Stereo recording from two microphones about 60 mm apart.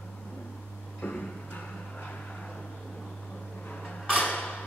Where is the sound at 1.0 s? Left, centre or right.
Left.